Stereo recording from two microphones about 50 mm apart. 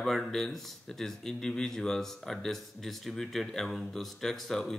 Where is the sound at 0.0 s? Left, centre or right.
Centre.